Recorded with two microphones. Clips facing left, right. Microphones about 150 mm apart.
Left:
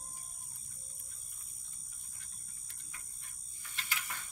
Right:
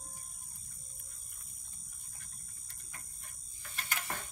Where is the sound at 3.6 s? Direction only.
45° right (ahead or behind).